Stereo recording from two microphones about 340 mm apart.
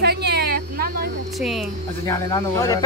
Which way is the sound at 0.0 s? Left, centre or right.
Right.